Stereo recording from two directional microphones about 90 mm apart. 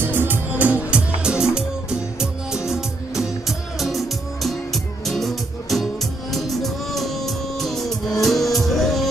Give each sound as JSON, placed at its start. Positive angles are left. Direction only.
{"t": 0.0, "sound": "music", "side_deg": -20}